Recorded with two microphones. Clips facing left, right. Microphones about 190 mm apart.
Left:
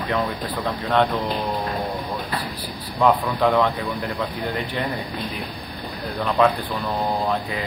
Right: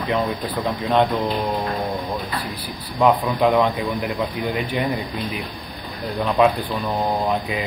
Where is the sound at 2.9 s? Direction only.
15° right (ahead or behind).